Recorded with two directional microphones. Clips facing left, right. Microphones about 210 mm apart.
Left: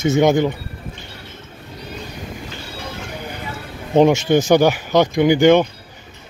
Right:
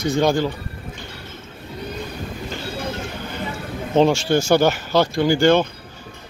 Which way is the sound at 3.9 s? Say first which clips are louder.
Left 3 dB; 20° left (ahead or behind).